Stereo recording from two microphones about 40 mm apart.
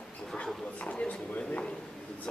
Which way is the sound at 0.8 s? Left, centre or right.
Left.